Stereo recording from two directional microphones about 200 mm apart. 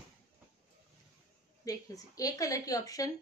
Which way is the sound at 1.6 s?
15° left (ahead or behind).